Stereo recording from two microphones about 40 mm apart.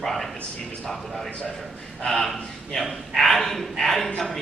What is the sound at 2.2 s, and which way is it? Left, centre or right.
A man's voice, centre.